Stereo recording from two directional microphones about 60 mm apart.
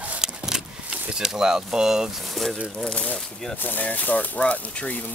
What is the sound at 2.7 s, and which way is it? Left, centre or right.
Speech, centre.